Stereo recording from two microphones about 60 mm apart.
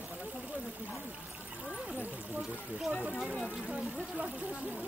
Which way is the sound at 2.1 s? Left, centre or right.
Right.